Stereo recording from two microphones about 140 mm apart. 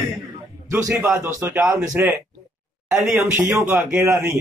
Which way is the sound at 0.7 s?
20° right (ahead or behind).